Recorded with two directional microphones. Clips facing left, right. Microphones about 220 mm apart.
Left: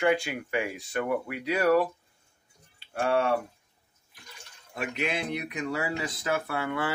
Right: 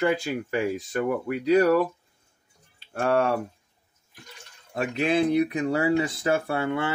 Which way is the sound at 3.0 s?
40° right (ahead or behind).